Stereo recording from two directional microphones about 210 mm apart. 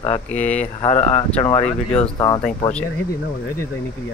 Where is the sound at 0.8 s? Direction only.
30° left (ahead or behind).